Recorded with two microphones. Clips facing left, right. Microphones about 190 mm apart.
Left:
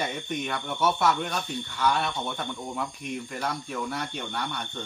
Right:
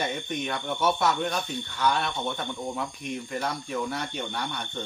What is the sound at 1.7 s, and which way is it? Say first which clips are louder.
Speech: even; 5° left (ahead or behind).